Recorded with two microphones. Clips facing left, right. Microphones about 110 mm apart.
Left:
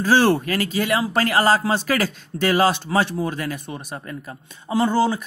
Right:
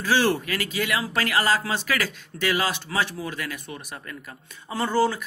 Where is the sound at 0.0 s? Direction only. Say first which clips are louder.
Left 5 dB; 35° left (ahead or behind).